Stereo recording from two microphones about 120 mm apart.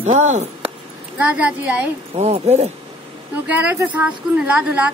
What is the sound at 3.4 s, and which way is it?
Speech, 10° right (ahead or behind).